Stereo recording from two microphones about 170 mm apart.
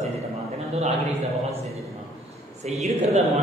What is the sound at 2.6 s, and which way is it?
Speech, 40° right (ahead or behind).